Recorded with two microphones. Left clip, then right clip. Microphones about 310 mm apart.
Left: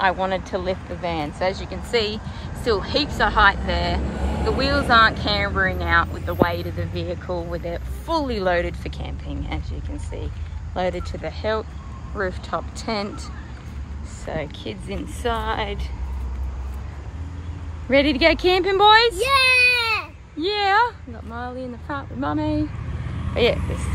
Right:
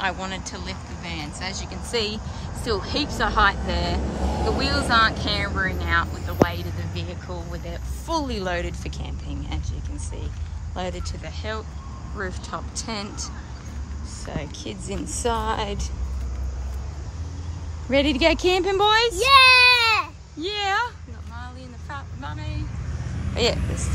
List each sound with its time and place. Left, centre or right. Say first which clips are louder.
0.0 s speech: left 7 dB; centre
4.0 s speech: right 1 dB; right
4.5 s speech: left 4 dB; centre
10.7 s speech: left 6 dB; centre
14.2 s speech: left 5 dB; centre
17.8 s a child's voice: left 3 dB; centre
21.9 s a woman's voice: left 10 dB; centre